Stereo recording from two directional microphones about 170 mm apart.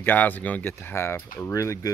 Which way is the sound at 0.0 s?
10° left (ahead or behind).